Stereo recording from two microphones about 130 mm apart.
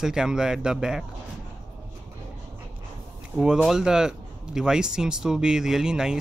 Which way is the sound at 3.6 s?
5° right (ahead or behind).